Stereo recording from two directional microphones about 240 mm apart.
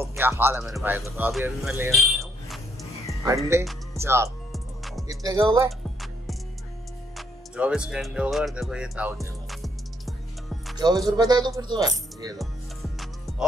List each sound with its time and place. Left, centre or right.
0.0 s music: centre
3.9 s speech: centre
4.5 s music: centre
5.0 s speech: centre
5.7 s music: centre
10.8 s speech: centre